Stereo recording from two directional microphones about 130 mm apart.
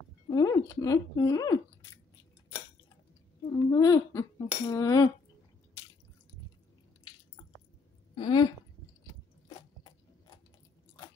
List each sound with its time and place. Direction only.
0.3 s speech: 25° left (ahead or behind)
3.5 s speech: 25° left (ahead or behind)
8.1 s a woman's voice: 35° left (ahead or behind)